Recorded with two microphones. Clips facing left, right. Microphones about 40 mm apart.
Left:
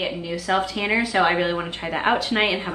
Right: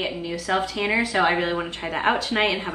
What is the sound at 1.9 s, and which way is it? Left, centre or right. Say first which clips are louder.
Speech: left 1 dB; centre.